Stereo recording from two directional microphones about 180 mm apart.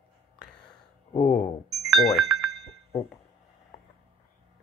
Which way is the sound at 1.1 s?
45° left (ahead or behind).